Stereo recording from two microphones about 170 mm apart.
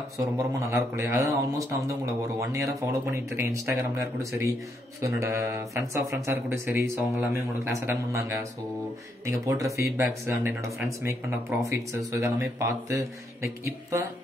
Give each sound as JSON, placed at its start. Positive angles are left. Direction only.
{"t": 0.2, "sound": "speech", "side_deg": -20}
{"t": 2.2, "sound": "speech", "side_deg": -20}